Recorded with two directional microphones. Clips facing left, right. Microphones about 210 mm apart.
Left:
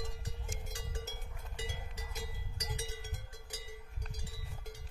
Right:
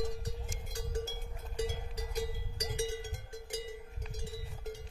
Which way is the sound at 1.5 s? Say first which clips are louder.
Right 9 dB; 40° right (ahead or behind).